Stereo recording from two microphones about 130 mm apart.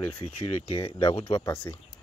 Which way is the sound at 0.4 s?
50° left (ahead or behind).